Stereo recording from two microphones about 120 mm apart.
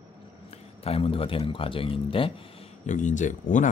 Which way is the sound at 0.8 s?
50° left (ahead or behind).